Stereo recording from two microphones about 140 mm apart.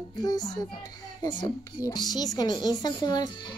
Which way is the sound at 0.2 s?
25° left (ahead or behind).